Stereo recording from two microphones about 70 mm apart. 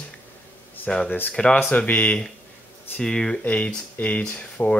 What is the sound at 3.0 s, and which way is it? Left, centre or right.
Speech, centre.